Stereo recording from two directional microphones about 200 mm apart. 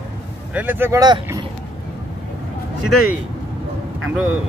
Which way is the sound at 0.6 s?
10° right (ahead or behind).